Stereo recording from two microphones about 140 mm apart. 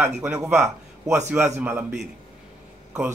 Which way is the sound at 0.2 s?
20° right (ahead or behind).